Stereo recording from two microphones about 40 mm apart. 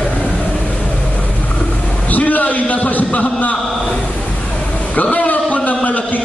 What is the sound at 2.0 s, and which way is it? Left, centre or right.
A man's voice, left.